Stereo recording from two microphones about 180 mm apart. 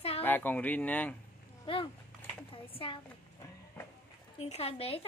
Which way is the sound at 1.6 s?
30° left (ahead or behind).